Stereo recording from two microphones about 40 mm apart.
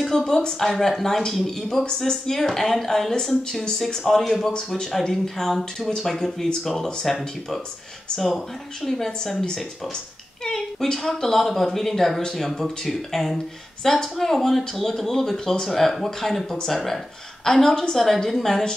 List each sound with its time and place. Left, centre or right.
0.2 s speech: centre
0.6 s speech: centre
1.9 s speech: centre
4.5 s speech: centre
8.8 s speech: centre